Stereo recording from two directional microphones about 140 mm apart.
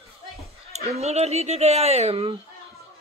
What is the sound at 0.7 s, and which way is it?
Speech, 50° right (ahead or behind).